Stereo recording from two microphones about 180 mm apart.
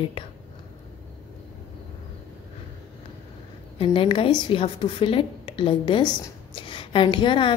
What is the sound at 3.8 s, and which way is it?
A woman's voice, 30° left (ahead or behind).